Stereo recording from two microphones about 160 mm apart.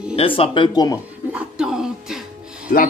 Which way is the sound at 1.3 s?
5° right (ahead or behind).